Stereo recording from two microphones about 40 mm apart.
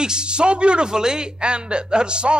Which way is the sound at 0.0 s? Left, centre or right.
Right.